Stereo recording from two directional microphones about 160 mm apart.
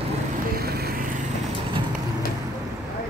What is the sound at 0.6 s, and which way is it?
Vehicle, 75° right (ahead or behind).